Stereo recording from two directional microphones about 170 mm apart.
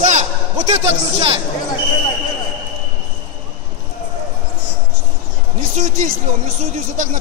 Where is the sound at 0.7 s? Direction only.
35° right (ahead or behind).